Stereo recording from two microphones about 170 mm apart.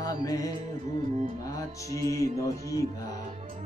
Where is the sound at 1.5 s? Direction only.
20° left (ahead or behind).